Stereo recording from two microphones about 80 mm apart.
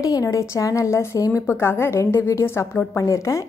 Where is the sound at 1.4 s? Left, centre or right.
Left.